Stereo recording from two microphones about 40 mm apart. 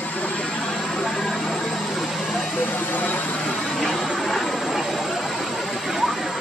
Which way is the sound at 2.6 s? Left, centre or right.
Left.